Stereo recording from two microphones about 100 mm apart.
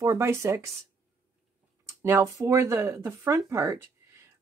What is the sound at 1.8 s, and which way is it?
Speech, 30° right (ahead or behind).